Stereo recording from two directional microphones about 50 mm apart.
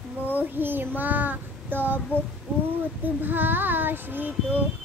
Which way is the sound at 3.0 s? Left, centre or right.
Right.